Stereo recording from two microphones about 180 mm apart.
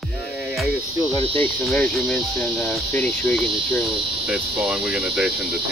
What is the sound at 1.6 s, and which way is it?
Speech, 5° left (ahead or behind).